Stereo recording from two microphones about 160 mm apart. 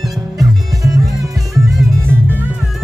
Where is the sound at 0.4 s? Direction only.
20° right (ahead or behind).